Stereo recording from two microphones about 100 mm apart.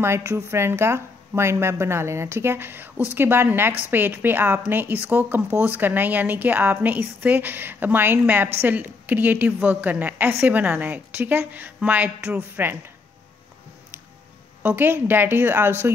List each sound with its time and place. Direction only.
0.0 s a woman's voice: 25° right (ahead or behind)
14.6 s a woman's voice: 15° right (ahead or behind)